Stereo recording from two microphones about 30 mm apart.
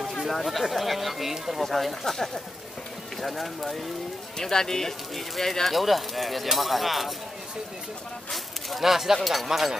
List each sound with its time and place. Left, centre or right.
0.3 s speech: centre
1.3 s speech: centre
1.6 s speech: centre
2.1 s speech: centre
4.4 s speech: centre
5.1 s speech: centre
8.3 s a sound: centre
8.8 s speech: centre
9.5 s speech: centre